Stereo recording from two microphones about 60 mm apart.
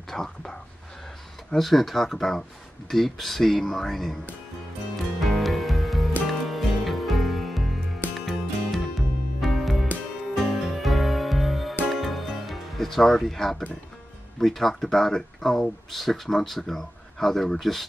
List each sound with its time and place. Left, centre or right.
0.1 s speech: centre
4.9 s music: centre
14.4 s speech: centre